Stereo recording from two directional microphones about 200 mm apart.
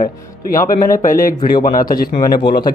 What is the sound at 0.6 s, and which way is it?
Speech, 45° left (ahead or behind).